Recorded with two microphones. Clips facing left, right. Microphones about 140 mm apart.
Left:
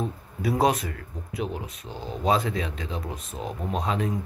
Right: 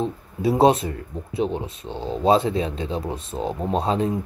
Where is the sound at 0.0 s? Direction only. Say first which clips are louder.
Right 6 dB; 25° right (ahead or behind).